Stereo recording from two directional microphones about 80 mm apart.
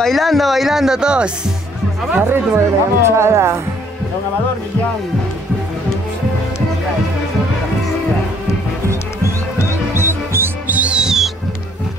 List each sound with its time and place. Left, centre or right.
0.0 s speech: centre
2.1 s speech: right
9.9 s music: right
10.7 s music: centre